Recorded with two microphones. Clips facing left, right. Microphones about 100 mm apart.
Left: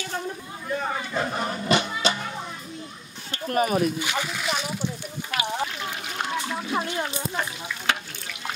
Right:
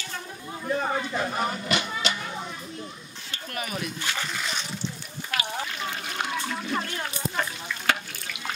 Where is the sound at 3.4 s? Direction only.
40° left (ahead or behind).